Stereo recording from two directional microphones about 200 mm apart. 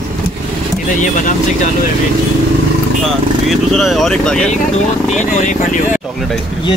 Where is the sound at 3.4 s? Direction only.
Centre (ahead or behind).